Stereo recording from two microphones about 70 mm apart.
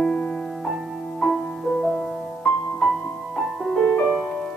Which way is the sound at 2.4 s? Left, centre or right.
Centre.